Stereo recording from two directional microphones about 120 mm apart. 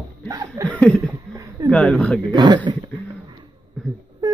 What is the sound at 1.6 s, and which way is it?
Speech, 5° left (ahead or behind).